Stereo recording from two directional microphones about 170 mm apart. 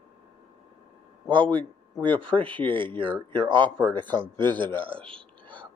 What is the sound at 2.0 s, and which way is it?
Speech, 30° right (ahead or behind).